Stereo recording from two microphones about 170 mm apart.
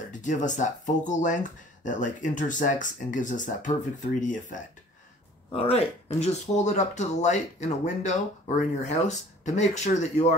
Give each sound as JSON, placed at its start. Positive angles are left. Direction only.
{"t": 0.1, "sound": "speech", "side_deg": 50}
{"t": 5.5, "sound": "speech", "side_deg": 35}